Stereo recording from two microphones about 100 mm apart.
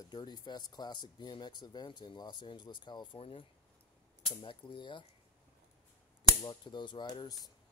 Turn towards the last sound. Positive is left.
turn(degrees=40)  # may be behind; listen again after turning